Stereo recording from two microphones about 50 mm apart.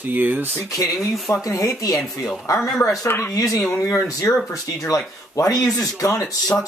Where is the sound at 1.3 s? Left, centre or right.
Left.